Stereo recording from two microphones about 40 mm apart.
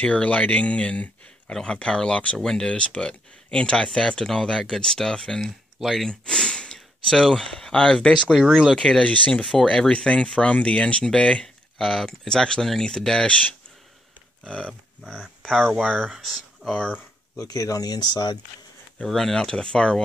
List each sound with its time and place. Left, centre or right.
0.0 s speech: left
2.3 s speech: centre
5.8 s speech: centre
6.0 s sigh: centre
7.7 s speech: left
9.0 s speech: left
9.4 s speech: centre
9.7 s speech: left
13.3 s speech: left
15.4 s speech: centre
16.2 s speech: centre
19.0 s speech: centre
19.5 s speech: left